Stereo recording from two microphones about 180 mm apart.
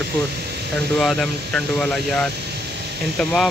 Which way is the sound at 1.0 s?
Centre (ahead or behind).